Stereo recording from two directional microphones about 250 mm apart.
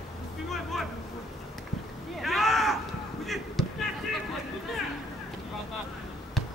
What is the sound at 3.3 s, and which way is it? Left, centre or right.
Basketball bounce, centre.